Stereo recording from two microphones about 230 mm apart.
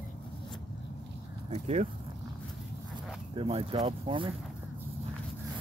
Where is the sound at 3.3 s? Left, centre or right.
Right.